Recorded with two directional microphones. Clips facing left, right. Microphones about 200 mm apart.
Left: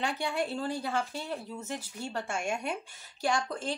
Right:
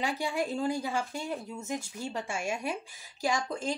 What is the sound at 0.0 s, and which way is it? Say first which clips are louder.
Speech: right 1 dB; 10° right (ahead or behind).